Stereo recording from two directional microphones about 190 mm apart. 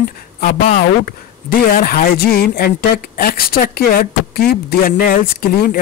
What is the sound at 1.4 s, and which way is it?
Speech, 50° left (ahead or behind).